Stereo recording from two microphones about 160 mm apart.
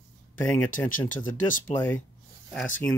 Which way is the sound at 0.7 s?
55° left (ahead or behind).